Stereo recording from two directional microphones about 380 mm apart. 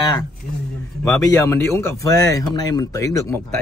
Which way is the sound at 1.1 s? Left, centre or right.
Centre.